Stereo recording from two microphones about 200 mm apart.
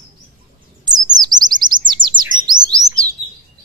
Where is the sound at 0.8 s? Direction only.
20° right (ahead or behind).